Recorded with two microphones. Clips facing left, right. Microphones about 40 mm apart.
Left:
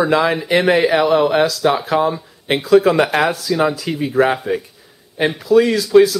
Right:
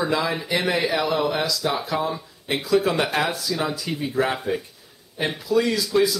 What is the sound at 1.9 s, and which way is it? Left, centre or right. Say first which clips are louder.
Speech: left 8 dB; left.